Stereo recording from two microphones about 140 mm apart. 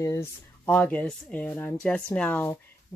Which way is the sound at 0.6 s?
10° left (ahead or behind).